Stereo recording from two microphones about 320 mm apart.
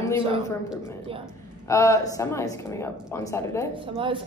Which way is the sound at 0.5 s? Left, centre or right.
Centre.